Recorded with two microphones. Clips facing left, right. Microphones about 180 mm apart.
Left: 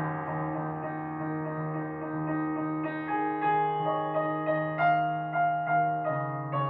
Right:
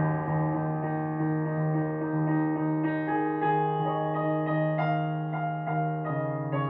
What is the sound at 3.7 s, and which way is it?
Music, 45° right (ahead or behind).